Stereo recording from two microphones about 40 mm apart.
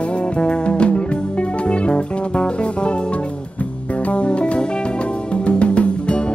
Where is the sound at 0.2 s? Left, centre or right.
Left.